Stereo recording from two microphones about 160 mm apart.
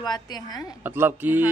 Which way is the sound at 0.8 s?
15° right (ahead or behind).